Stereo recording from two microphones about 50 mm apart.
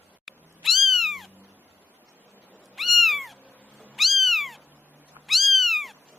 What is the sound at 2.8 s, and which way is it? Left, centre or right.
Cat, centre.